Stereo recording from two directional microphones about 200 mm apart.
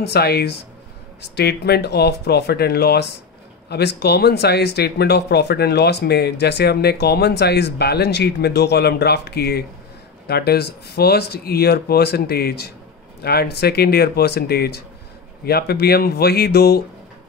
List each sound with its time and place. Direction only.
0.0 s speech: 55° left (ahead or behind)